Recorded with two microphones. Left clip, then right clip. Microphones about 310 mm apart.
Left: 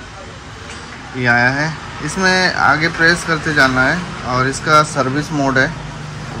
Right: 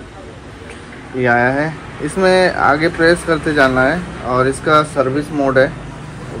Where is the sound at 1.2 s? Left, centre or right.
Centre.